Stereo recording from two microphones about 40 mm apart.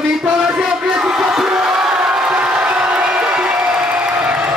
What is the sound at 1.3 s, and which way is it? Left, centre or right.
Crowd, centre.